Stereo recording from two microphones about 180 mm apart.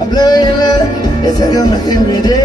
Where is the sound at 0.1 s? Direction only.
25° left (ahead or behind).